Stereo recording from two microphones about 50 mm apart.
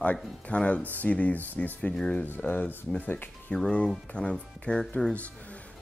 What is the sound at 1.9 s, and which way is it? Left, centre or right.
Speech, left.